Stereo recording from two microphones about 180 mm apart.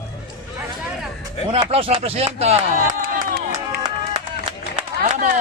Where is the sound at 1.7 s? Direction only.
35° right (ahead or behind).